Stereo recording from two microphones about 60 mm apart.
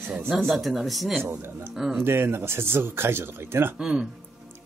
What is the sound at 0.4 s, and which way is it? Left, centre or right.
Speech, centre.